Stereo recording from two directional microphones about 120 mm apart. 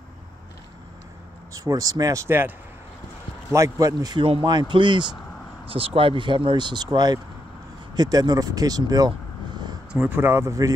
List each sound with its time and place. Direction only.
1.5 s speech: 30° right (ahead or behind)
3.5 s speech: 25° right (ahead or behind)
4.2 s speech: 45° right (ahead or behind)
9.9 s speech: 15° right (ahead or behind)